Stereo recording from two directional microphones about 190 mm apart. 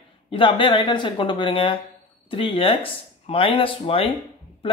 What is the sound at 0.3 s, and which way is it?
Speech, 25° left (ahead or behind).